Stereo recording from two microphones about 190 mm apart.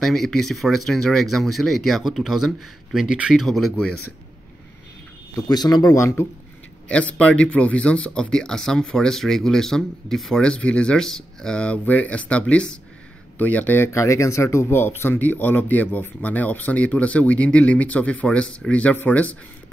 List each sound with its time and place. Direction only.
0.0 s speech: centre (ahead or behind)
5.5 s speech: 20° left (ahead or behind)